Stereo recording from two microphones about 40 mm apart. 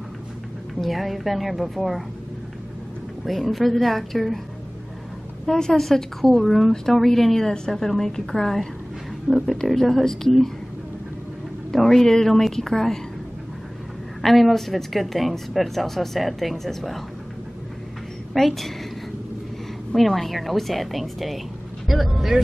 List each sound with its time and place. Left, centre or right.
0.7 s a woman's voice: centre
3.3 s a woman's voice: centre
5.5 s a woman's voice: centre
9.3 s speech: centre
9.7 s a woman's voice: centre
11.7 s a woman's voice: centre
14.2 s a woman's voice: centre
18.3 s a woman's voice: centre
19.9 s a woman's voice: centre